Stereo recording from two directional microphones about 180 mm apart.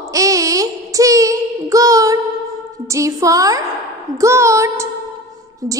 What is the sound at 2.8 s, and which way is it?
A woman's voice, 15° right (ahead or behind).